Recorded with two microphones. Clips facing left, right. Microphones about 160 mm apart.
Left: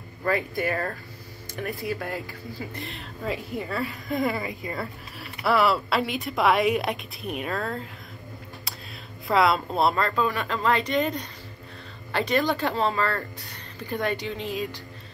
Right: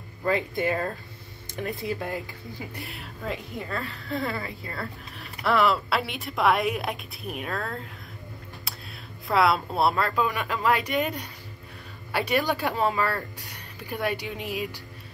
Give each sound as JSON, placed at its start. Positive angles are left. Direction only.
{"t": 0.2, "sound": "speech", "side_deg": -20}
{"t": 2.7, "sound": "a woman's voice", "side_deg": -10}
{"t": 5.2, "sound": "a woman's voice", "side_deg": 5}
{"t": 9.3, "sound": "speech", "side_deg": 0}